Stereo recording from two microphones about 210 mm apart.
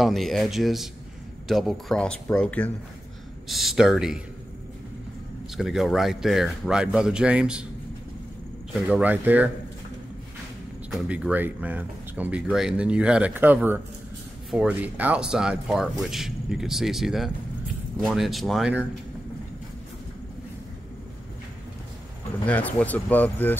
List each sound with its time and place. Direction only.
0.0 s speech: centre (ahead or behind)
5.6 s speech: centre (ahead or behind)
8.8 s speech: 5° right (ahead or behind)
10.9 s speech: 5° right (ahead or behind)
22.5 s speech: 5° left (ahead or behind)